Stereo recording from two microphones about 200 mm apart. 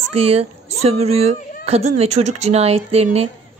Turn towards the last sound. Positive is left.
turn(degrees=-30)  # may be behind; listen again after turning